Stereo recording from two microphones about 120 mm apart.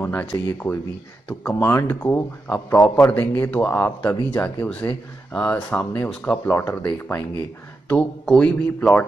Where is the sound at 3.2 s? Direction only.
15° left (ahead or behind).